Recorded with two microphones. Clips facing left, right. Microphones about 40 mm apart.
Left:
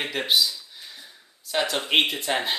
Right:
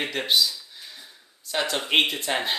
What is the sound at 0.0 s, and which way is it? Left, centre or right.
Speech, centre.